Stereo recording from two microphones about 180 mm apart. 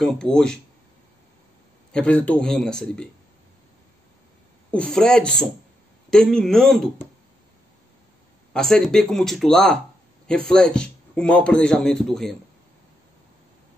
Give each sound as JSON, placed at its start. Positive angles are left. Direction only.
{"t": 0.0, "sound": "a man's voice", "side_deg": 5}
{"t": 1.9, "sound": "a man's voice", "side_deg": 5}
{"t": 4.6, "sound": "a man's voice", "side_deg": 5}
{"t": 8.5, "sound": "a man's voice", "side_deg": 0}